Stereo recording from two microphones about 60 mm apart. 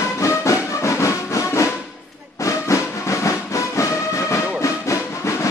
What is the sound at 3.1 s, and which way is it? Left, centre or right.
Music, left.